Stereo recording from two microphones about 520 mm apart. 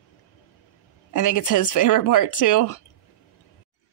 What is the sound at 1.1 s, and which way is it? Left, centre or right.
Speech, left.